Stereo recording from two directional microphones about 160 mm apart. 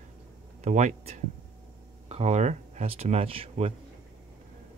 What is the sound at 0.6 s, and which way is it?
Speech, 50° right (ahead or behind).